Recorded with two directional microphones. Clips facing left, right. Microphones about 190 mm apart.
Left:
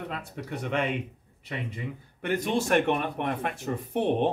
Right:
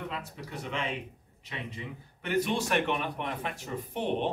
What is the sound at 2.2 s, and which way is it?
Speech, 50° left (ahead or behind).